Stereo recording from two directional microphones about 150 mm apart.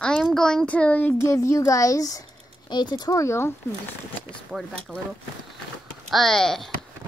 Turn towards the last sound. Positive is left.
turn(degrees=0)  # may be behind; listen again after turning